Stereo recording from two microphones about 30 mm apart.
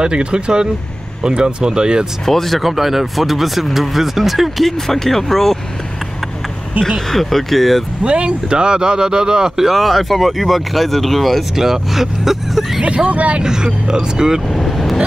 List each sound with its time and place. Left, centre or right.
0.0 s speech: right
2.2 s speech: centre
2.6 s speech: centre
4.6 s speech: centre
7.1 s speech: centre
8.0 s speech: right
9.6 s speech: centre
11.5 s speech: centre
12.8 s speech: right
13.4 s speech: right
14.5 s speech: centre